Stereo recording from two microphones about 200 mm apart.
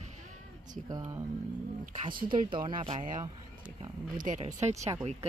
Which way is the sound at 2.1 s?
45° right (ahead or behind).